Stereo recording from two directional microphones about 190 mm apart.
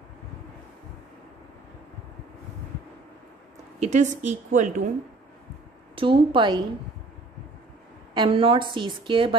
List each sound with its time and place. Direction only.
3.8 s a woman's voice: 40° right (ahead or behind)
5.9 s a woman's voice: 25° right (ahead or behind)
8.1 s a woman's voice: 25° right (ahead or behind)